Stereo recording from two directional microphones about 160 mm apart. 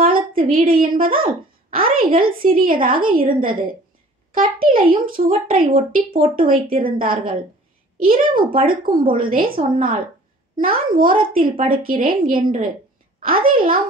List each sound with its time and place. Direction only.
0.0 s a woman's voice: 65° right (ahead or behind)